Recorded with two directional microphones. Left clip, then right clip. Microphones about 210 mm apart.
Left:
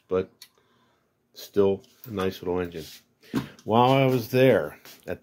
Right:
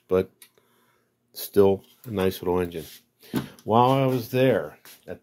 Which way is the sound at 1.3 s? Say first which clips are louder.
Right 3 dB; 30° right (ahead or behind).